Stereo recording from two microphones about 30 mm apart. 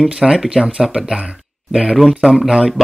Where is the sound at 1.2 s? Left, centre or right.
Right.